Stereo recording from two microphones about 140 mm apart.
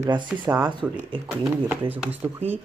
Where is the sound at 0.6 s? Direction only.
30° right (ahead or behind).